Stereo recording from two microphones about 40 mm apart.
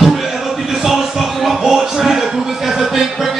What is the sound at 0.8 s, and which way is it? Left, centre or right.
Music, centre.